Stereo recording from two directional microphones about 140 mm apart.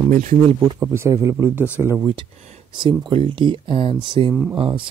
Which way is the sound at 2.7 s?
35° right (ahead or behind).